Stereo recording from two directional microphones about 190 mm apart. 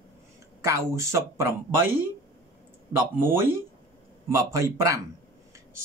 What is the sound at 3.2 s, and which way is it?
Speech, 10° right (ahead or behind).